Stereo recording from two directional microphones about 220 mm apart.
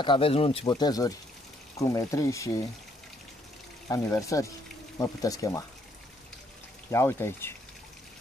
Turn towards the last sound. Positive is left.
turn(degrees=10)  # may be behind; listen again after turning